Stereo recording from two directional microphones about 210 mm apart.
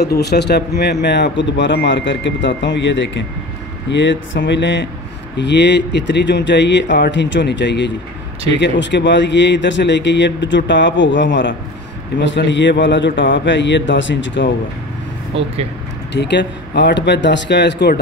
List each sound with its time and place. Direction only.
0.0 s speech: 50° left (ahead or behind)
15.3 s speech: 30° right (ahead or behind)
16.1 s speech: 55° left (ahead or behind)